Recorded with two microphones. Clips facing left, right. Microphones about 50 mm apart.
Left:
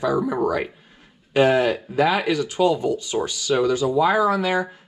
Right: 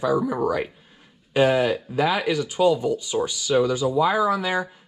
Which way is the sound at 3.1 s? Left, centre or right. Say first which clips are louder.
Right 1 dB; left.